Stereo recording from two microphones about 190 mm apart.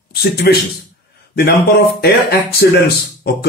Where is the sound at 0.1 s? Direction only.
55° left (ahead or behind).